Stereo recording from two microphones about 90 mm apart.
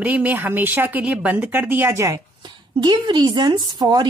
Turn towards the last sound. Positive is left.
turn(degrees=-50)  # may be behind; listen again after turning